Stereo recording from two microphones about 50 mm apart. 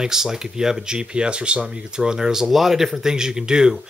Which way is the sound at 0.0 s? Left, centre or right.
Centre.